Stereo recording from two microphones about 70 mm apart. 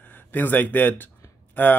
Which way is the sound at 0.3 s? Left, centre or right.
Left.